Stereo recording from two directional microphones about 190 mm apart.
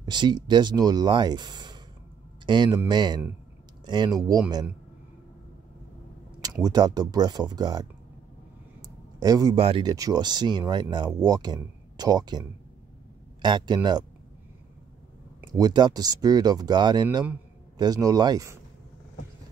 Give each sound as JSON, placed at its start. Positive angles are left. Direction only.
{"t": 0.0, "sound": "speech", "side_deg": -25}
{"t": 6.4, "sound": "speech", "side_deg": -20}
{"t": 8.8, "sound": "a sound", "side_deg": -20}
{"t": 9.6, "sound": "speech", "side_deg": -30}
{"t": 15.5, "sound": "speech", "side_deg": -20}